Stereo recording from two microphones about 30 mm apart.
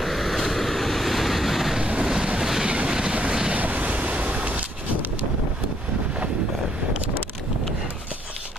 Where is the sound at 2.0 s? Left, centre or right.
Right.